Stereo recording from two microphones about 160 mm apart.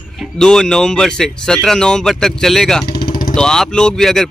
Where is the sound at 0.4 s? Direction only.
5° left (ahead or behind).